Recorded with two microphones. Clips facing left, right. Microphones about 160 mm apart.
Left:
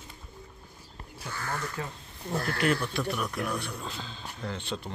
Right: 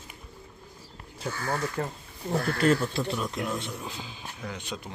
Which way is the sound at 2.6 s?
30° right (ahead or behind).